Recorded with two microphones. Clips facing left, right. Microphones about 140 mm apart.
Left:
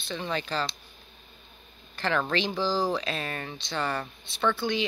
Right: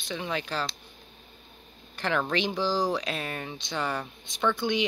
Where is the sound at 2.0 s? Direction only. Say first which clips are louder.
Even; 10° right (ahead or behind).